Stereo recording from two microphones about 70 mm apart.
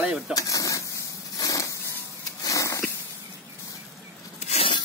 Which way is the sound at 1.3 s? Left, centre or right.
Left.